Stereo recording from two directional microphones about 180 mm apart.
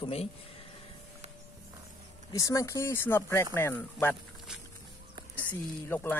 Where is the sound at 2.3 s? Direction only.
15° left (ahead or behind).